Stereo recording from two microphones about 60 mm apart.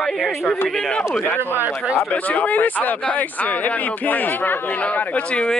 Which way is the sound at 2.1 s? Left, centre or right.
Left.